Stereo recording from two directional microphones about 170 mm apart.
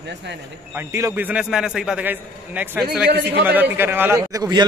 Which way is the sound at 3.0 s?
75° right (ahead or behind).